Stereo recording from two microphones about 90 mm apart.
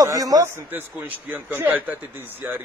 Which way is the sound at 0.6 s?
20° right (ahead or behind).